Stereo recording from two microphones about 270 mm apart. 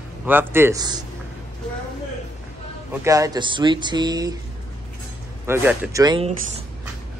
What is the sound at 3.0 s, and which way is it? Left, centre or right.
Speech, centre.